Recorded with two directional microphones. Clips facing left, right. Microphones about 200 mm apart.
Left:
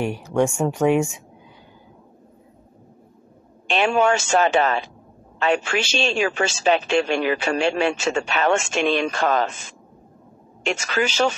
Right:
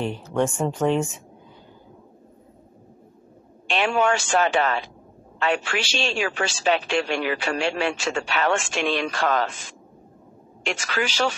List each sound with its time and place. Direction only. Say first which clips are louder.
0.0 s speech: left 3 dB; 10° left (ahead or behind)
3.6 s speech: left 3 dB; 25° left (ahead or behind)
10.7 s speech: left 4 dB; 25° left (ahead or behind)